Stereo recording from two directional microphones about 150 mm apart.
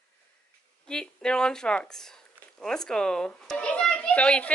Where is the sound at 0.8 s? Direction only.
5° left (ahead or behind).